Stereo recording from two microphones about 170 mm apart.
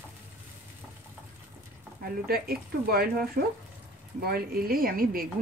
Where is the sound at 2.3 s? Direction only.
65° right (ahead or behind).